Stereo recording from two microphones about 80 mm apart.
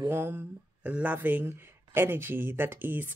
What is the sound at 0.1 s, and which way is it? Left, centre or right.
Speech, right.